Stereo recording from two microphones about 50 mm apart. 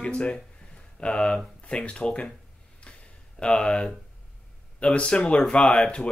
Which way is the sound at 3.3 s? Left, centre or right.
Centre.